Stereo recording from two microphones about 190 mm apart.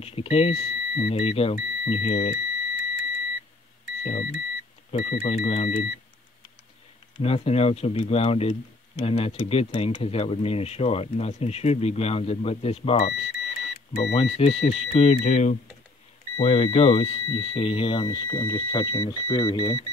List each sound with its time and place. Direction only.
0.0 s speech: 30° left (ahead or behind)
4.0 s speech: 40° left (ahead or behind)
7.2 s speech: 30° left (ahead or behind)